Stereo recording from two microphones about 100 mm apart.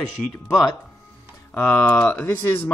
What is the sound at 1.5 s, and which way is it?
Speech, 20° left (ahead or behind).